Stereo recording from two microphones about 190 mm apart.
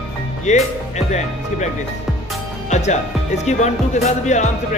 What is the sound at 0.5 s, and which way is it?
Speech, 35° left (ahead or behind).